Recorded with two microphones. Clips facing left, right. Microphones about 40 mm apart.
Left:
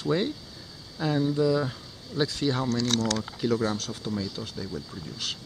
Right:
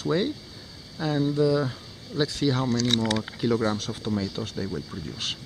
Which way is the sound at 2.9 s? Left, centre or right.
Right.